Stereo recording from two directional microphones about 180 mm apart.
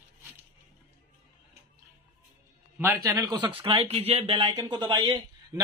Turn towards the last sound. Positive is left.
turn(degrees=-25)  # may be behind; listen again after turning